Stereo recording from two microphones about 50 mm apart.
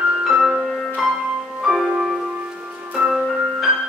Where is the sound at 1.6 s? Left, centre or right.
Centre.